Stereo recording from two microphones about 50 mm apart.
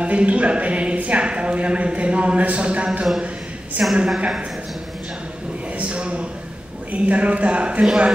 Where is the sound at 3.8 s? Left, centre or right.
Right.